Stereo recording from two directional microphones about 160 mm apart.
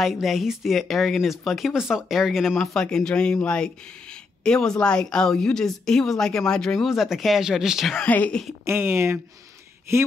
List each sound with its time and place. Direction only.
0.0 s speech: centre (ahead or behind)
8.6 s speech: 15° right (ahead or behind)